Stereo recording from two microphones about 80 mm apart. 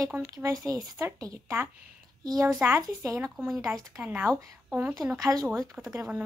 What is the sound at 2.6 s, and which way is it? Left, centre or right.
Speech, right.